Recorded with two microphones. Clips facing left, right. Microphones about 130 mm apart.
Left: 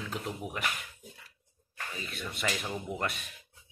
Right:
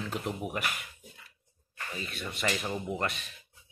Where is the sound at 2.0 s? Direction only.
Centre (ahead or behind).